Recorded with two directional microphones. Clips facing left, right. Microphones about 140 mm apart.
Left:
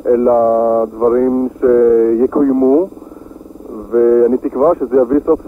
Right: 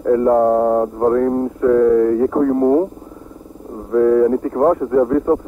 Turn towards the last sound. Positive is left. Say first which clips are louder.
# left 4 dB
turn(degrees=30)  # may be behind; listen again after turning